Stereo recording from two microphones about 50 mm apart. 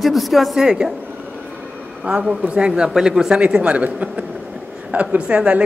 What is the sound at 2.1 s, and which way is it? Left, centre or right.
A man's voice, right.